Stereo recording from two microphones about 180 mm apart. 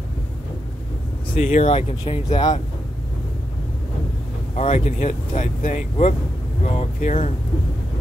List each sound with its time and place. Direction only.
1.3 s speech: 45° left (ahead or behind)
1.7 s speech: 35° left (ahead or behind)
4.6 s speech: 40° left (ahead or behind)